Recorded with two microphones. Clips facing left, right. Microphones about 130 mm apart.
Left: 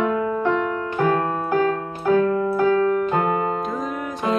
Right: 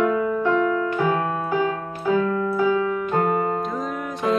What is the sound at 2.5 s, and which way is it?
Piano, 50° left (ahead or behind).